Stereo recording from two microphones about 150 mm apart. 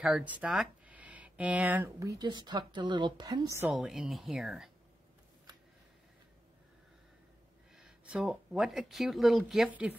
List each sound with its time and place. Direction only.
0.0 s speech: 5° right (ahead or behind)
2.1 s a woman's voice: 30° right (ahead or behind)
3.7 s speech: 5° right (ahead or behind)
7.7 s speech: 5° right (ahead or behind)